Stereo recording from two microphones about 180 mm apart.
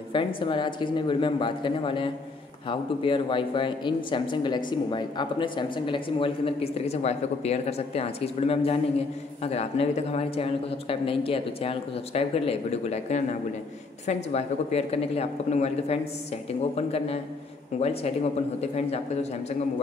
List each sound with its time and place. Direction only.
0.1 s speech: 30° left (ahead or behind)